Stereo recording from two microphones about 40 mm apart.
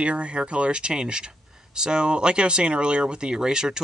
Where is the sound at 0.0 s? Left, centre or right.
Right.